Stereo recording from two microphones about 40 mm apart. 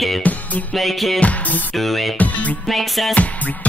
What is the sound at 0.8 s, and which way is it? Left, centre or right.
Speech, centre.